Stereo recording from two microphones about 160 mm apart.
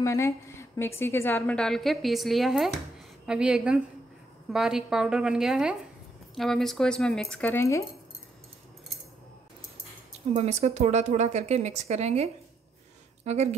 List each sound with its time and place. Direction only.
0.0 s a woman's voice: 20° left (ahead or behind)
10.3 s speech: 40° right (ahead or behind)